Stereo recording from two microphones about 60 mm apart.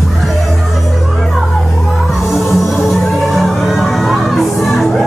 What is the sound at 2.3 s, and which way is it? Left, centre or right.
Music, centre.